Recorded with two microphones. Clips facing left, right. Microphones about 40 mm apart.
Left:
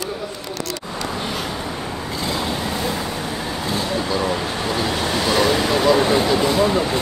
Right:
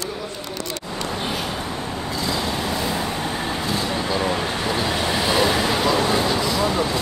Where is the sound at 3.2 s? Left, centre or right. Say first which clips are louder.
Right 1 dB; right.